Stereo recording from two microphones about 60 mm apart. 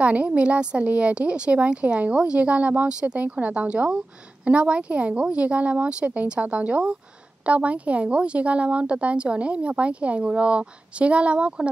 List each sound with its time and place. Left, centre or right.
0.0 s a woman's voice: right